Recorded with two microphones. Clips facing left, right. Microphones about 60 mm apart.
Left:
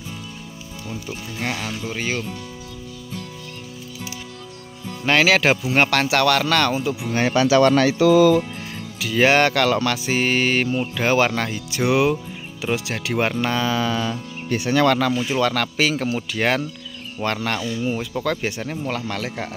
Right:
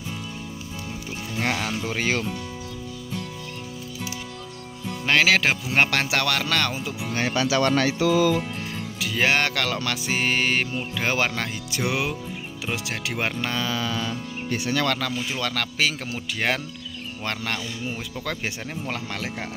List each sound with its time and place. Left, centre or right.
1.4 s speech: right
1.9 s speech: right
5.0 s music: centre
5.9 s music: centre
7.2 s speech: left
7.5 s speech: left
9.0 s music: centre
13.6 s mantra: left
13.8 s speech: left
14.7 s speech: left
15.3 s speech: centre
16.3 s music: centre
17.6 s speech: centre
18.2 s speech: centre